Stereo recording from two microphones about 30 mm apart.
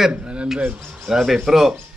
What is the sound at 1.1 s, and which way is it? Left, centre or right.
Speech, centre.